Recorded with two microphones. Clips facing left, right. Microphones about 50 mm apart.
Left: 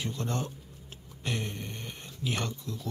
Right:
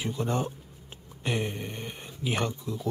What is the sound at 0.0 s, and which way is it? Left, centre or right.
Speech, centre.